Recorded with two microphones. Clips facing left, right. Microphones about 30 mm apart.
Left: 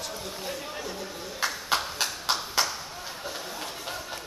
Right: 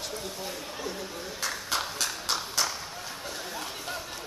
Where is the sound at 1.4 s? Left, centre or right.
Centre.